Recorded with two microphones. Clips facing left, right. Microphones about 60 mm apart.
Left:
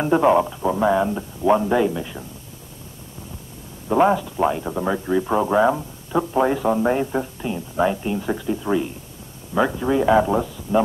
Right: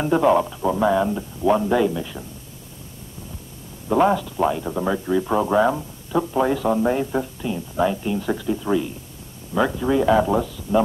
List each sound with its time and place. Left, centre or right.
0.0 s speech: centre
3.9 s speech: centre